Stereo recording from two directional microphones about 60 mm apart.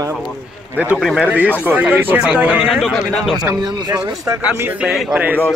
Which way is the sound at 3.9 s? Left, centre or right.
Right.